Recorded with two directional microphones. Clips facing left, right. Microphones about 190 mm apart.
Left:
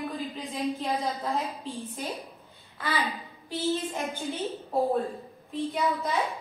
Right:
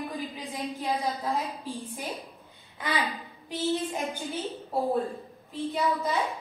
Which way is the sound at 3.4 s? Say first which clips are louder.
Even; 15° right (ahead or behind).